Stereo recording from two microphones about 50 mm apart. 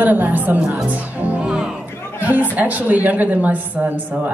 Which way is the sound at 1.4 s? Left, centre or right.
Centre.